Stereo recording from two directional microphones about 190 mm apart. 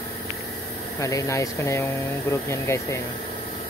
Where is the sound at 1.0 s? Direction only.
15° left (ahead or behind).